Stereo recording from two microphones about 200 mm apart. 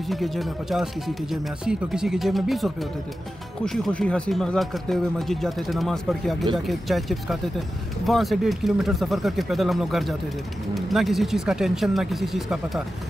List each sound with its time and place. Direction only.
0.1 s speech: centre (ahead or behind)